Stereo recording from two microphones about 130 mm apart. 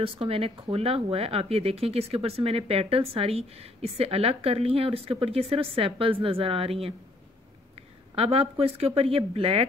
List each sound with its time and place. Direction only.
0.0 s speech: 45° right (ahead or behind)
8.2 s speech: 50° right (ahead or behind)